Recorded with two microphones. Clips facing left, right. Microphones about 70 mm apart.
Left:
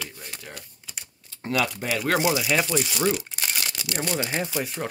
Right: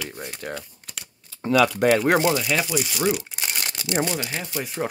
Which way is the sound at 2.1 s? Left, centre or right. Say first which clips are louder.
Right 2 dB; centre.